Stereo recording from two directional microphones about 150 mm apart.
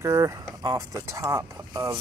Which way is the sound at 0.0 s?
20° right (ahead or behind).